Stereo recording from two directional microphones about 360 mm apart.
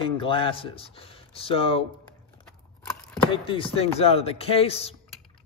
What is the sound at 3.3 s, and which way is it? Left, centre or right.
A man's voice, centre.